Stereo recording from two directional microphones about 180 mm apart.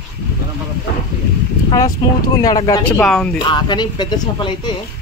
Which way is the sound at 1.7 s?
20° left (ahead or behind).